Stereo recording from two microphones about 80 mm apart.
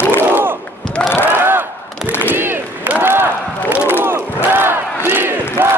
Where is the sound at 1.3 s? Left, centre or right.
Right.